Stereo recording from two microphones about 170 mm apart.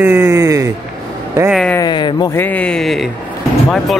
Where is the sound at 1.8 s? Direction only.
25° left (ahead or behind).